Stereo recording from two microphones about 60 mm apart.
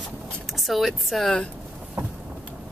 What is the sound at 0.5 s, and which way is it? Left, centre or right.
Speech, centre.